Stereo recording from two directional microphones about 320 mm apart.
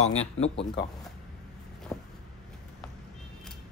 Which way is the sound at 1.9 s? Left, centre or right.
Centre.